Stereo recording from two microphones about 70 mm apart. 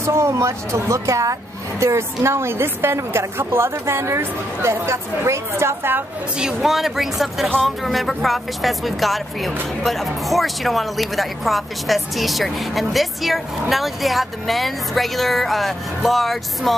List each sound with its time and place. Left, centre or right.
0.0 s a woman's voice: right
6.3 s speech: centre